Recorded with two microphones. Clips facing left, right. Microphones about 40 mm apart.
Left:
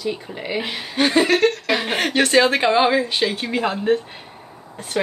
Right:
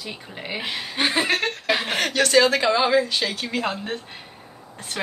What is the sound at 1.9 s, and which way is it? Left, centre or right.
A woman's voice, left.